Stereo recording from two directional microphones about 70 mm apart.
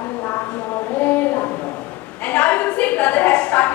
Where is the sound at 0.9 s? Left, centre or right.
Left.